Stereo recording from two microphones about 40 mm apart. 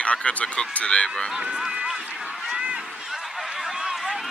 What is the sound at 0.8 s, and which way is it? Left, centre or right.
Speech, left.